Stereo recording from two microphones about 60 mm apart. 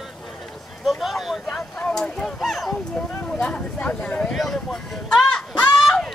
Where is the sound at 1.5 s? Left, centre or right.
Centre.